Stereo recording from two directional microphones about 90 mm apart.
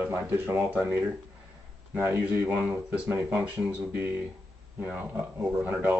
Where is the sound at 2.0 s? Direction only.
20° right (ahead or behind).